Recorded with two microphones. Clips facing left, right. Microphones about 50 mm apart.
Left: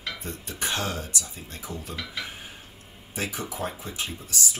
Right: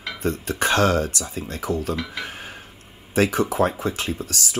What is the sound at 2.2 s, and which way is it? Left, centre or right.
Dishes, right.